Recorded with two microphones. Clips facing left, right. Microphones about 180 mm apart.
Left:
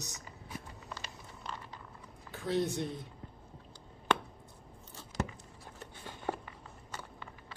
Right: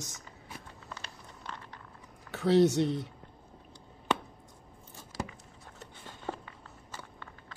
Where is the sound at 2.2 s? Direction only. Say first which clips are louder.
Right 9 dB; 80° right.